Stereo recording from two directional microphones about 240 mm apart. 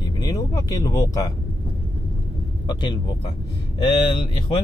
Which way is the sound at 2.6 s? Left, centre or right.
Centre.